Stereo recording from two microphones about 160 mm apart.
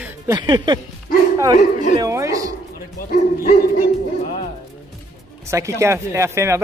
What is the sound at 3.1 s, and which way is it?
Speech, 65° left (ahead or behind).